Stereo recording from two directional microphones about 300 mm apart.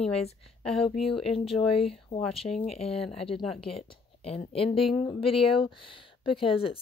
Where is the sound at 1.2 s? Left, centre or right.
Centre.